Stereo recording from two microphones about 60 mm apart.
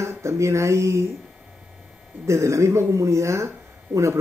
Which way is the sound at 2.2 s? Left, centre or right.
Right.